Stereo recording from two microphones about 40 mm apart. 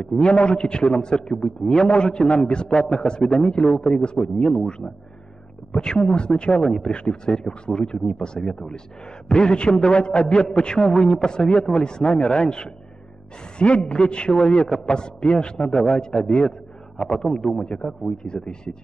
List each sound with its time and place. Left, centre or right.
0.2 s a man's voice: left
18.1 s a man's voice: left